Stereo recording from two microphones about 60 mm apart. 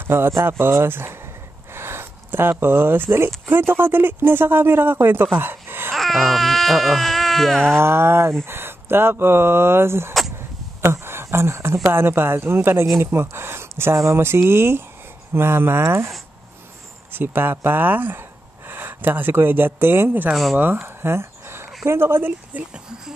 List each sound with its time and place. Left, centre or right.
0.0 s speech: right
1.7 s a sound: right
2.6 s speech: right
5.9 s speech: centre
7.8 s speech: right
17.1 s speech: right
22.5 s speech: right